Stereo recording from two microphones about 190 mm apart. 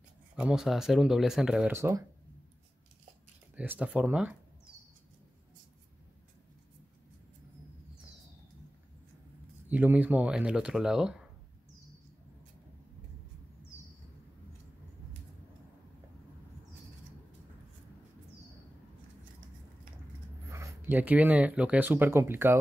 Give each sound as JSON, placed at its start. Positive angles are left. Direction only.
{"t": 0.4, "sound": "speech", "side_deg": -5}
{"t": 3.5, "sound": "speech", "side_deg": -10}
{"t": 9.7, "sound": "speech", "side_deg": -10}
{"t": 20.4, "sound": "speech", "side_deg": -15}